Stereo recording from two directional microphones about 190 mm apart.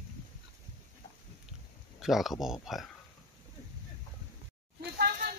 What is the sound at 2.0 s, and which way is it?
Speech, centre (ahead or behind).